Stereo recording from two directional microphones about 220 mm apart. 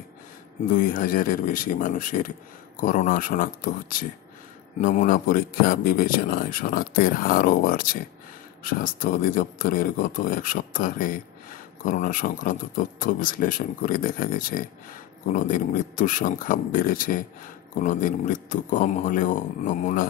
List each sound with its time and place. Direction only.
0.7 s a man's voice: 40° left (ahead or behind)